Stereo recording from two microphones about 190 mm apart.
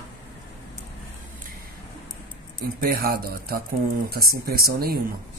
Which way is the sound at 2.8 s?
55° right (ahead or behind).